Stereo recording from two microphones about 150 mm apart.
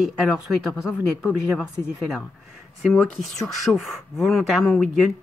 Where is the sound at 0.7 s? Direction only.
5° right (ahead or behind).